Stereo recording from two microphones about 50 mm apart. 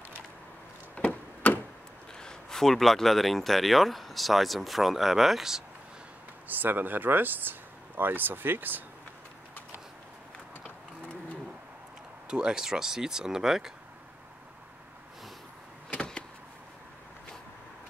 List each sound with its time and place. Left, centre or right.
0.9 s chop: left
2.1 s speech: centre
6.4 s speech: right
12.3 s speech: centre